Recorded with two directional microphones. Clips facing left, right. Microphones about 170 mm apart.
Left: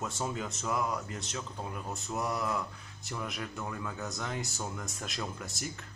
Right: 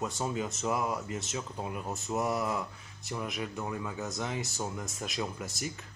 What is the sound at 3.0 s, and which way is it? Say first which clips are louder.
Speech: right 2 dB; centre (ahead or behind).